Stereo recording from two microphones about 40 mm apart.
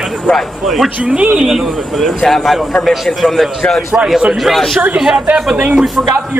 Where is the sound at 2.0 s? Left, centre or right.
Centre.